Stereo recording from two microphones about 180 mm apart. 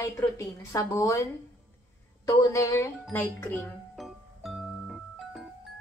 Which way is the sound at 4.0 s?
Centre (ahead or behind).